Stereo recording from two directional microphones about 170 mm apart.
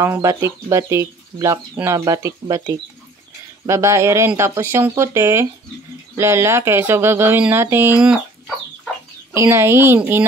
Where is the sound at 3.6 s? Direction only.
15° right (ahead or behind).